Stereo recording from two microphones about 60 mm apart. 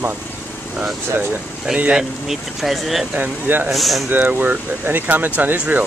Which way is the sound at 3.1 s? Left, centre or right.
Right.